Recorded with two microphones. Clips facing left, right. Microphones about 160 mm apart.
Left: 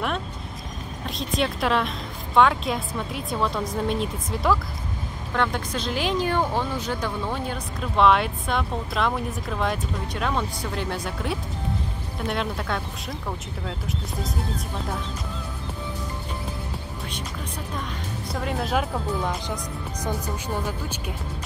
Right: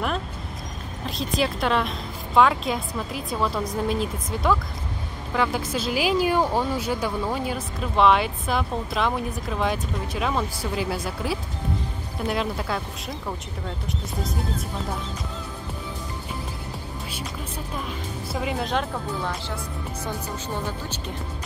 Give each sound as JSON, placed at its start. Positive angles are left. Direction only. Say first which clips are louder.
{"t": 1.0, "sound": "speech", "louder": "right 1 dB", "side_deg": 0}
{"t": 18.3, "sound": "speech", "louder": "even", "side_deg": -5}
{"t": 19.2, "sound": "speech", "louder": "left 2 dB", "side_deg": 15}